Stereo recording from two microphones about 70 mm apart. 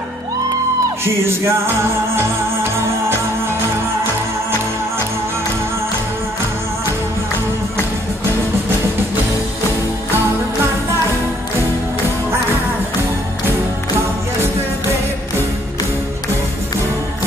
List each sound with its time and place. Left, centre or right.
1.0 s music: right